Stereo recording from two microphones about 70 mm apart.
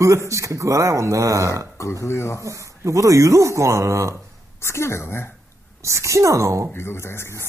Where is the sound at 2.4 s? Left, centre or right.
Right.